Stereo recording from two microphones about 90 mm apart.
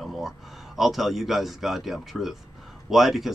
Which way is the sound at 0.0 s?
Centre (ahead or behind).